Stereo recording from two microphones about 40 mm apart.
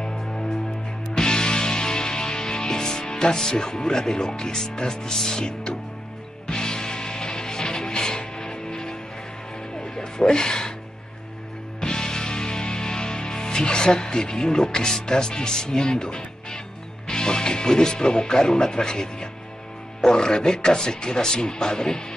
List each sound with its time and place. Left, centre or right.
0.0 s music: centre
4.6 s speech: centre
6.4 s music: centre
11.8 s music: centre
14.9 s speech: centre